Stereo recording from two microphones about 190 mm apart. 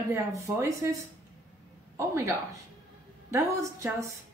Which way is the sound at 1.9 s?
15° right (ahead or behind).